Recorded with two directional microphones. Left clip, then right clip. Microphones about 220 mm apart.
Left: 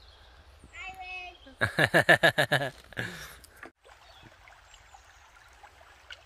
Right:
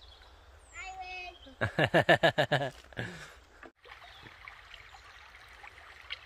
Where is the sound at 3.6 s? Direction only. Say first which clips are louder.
Left 4 dB; 50° left (ahead or behind).